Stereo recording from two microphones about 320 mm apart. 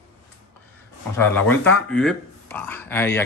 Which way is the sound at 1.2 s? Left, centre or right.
Centre.